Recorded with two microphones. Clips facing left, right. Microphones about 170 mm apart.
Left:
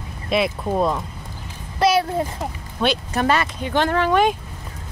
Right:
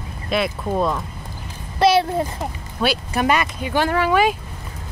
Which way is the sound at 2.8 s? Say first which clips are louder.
Even; 10° right (ahead or behind).